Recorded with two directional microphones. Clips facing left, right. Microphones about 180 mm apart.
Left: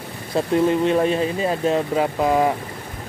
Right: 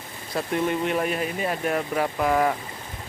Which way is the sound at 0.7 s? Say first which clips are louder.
Left 7 dB; 30° left (ahead or behind).